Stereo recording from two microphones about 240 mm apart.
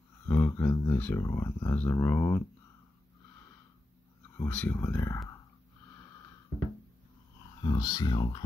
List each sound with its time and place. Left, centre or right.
0.3 s speech: centre
4.4 s speech: centre
7.6 s speech: centre